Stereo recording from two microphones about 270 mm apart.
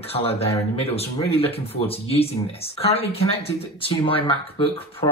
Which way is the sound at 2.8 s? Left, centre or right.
Left.